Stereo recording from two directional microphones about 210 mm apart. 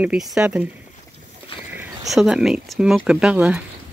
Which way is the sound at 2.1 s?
Centre (ahead or behind).